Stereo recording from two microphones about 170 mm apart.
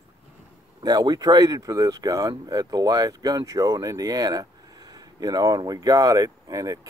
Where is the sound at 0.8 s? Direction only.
25° right (ahead or behind).